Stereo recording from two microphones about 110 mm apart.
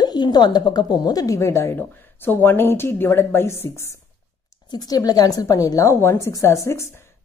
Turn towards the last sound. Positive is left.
turn(degrees=25)  # may be behind; listen again after turning